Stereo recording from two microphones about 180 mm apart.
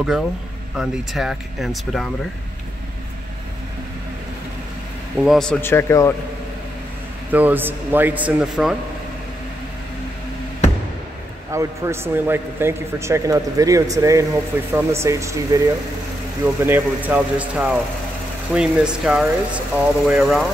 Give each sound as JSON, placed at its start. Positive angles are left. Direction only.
{"t": 0.7, "sound": "speech", "side_deg": 0}
{"t": 5.2, "sound": "a man's voice", "side_deg": 0}
{"t": 7.2, "sound": "a man's voice", "side_deg": -10}
{"t": 11.5, "sound": "a man's voice", "side_deg": -15}